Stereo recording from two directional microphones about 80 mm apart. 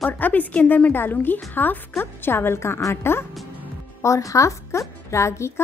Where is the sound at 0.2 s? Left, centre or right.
Left.